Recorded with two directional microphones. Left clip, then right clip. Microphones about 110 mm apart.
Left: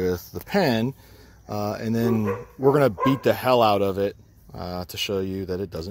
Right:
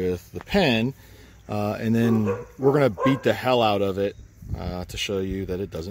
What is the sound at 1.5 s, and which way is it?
Speech, 25° right (ahead or behind).